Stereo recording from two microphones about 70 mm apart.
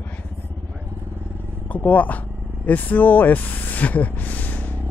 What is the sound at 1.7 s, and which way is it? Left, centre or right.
Speech, left.